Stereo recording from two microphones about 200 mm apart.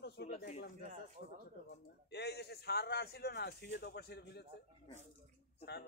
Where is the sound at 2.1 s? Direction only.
55° left (ahead or behind).